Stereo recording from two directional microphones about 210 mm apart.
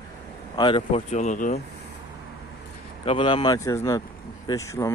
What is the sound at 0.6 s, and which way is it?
Speech, 25° left (ahead or behind).